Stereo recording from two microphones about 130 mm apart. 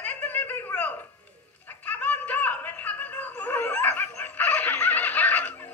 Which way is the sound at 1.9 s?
10° left (ahead or behind).